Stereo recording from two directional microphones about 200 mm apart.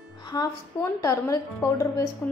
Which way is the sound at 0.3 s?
20° left (ahead or behind).